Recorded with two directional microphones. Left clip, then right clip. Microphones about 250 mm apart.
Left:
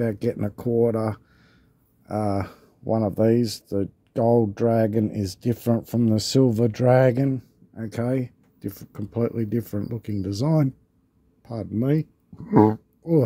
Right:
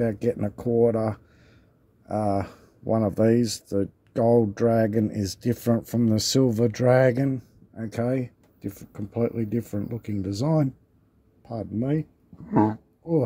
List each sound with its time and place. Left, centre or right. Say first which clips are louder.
0.0 s speech: even; centre
12.4 s speech: left 5 dB; left